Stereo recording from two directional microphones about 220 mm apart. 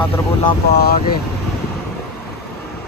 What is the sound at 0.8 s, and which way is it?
Speech, 45° left (ahead or behind).